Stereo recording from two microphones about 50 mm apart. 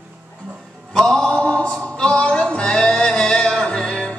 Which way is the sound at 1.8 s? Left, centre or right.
Centre.